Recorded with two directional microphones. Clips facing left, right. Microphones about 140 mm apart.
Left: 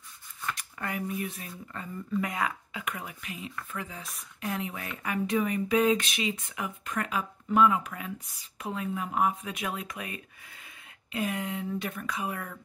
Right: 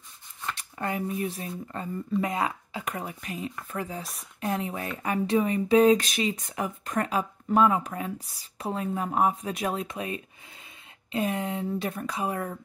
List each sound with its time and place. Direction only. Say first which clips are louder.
0.6 s speech: right 7 dB; 30° right (ahead or behind)